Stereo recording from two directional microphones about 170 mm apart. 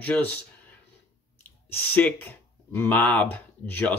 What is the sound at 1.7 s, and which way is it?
Speech, 10° left (ahead or behind).